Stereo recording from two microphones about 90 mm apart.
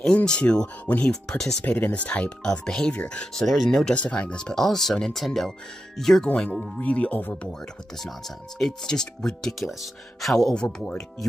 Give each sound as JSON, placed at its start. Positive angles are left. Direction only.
{"t": 0.0, "sound": "speech", "side_deg": 10}
{"t": 1.6, "sound": "speech", "side_deg": 20}
{"t": 3.4, "sound": "speech", "side_deg": 0}
{"t": 8.5, "sound": "speech", "side_deg": 5}